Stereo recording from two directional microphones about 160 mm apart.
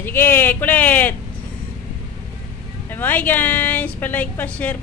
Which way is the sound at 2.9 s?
10° left (ahead or behind).